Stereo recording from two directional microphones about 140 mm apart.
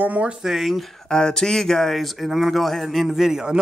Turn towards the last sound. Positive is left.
turn(degrees=-5)  # may be behind; listen again after turning